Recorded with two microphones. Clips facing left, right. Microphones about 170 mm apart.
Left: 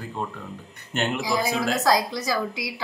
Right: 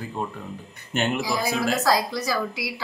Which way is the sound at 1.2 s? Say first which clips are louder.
Even; 20° left (ahead or behind).